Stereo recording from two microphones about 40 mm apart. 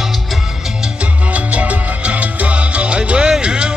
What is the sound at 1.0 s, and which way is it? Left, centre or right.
Salsa music, right.